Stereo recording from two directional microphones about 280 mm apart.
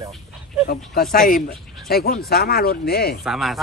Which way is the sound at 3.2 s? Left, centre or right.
Centre.